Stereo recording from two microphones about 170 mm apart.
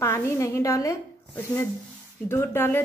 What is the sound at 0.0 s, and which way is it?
A woman's voice, 15° left (ahead or behind).